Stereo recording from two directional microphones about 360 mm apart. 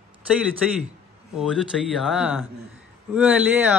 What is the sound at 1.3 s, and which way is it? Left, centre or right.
A man's voice, centre.